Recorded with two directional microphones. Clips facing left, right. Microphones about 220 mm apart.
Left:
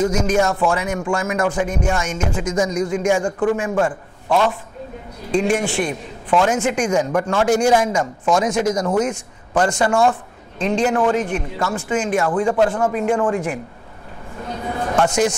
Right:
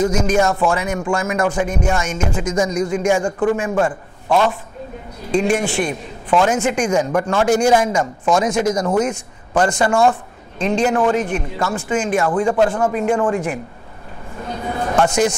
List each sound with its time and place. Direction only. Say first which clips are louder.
0.2 s speech: right 1 dB; 25° right (ahead or behind)
5.5 s a man's voice: right 1 dB; 15° right (ahead or behind)
14.4 s a sound: right 1 dB; 20° right (ahead or behind)